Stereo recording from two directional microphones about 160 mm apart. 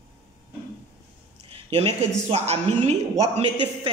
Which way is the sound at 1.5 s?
35° right (ahead or behind).